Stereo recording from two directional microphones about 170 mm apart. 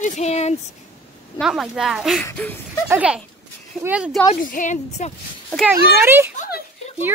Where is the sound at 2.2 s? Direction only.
10° left (ahead or behind).